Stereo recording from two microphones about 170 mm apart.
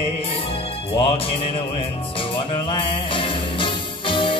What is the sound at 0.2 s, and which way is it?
Music, 30° left (ahead or behind).